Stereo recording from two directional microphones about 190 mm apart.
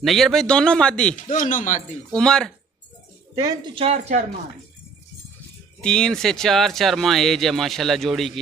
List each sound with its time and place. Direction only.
0.0 s speech: centre (ahead or behind)
1.3 s speech: 40° left (ahead or behind)
2.1 s speech: 5° left (ahead or behind)
3.3 s speech: 30° right (ahead or behind)
5.8 s speech: 5° left (ahead or behind)